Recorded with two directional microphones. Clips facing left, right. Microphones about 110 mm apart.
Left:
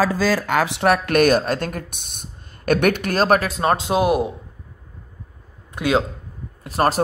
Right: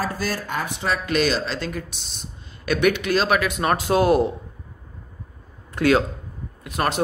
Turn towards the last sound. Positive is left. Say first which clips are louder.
# left 5 dB
turn(degrees=35)  # may be behind; listen again after turning